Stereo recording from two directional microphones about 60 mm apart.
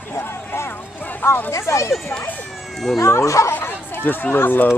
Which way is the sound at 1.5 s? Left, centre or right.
Left.